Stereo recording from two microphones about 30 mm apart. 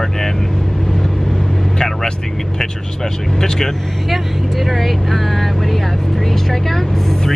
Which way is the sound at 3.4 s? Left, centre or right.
Centre.